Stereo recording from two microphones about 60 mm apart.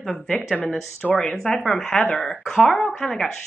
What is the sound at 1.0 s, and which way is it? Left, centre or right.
Speech, left.